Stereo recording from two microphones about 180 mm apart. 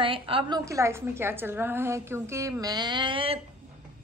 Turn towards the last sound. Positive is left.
turn(degrees=-30)  # may be behind; listen again after turning